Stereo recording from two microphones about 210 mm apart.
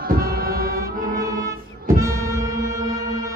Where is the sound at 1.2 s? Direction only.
15° right (ahead or behind).